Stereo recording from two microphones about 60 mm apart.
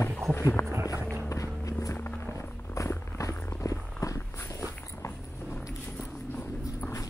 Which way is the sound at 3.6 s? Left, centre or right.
Left.